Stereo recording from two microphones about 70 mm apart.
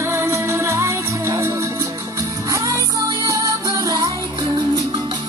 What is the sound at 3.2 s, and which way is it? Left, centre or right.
Music, right.